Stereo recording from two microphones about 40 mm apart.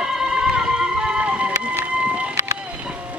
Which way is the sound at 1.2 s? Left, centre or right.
Right.